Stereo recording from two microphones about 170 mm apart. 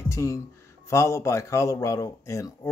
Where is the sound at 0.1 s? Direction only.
15° left (ahead or behind).